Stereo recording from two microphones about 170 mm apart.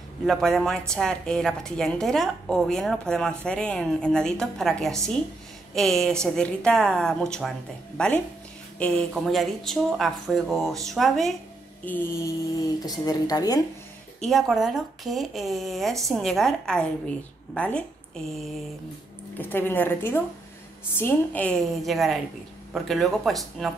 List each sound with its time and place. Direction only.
0.2 s a woman's voice: centre (ahead or behind)
11.8 s mantra: 10° left (ahead or behind)
14.2 s a woman's voice: centre (ahead or behind)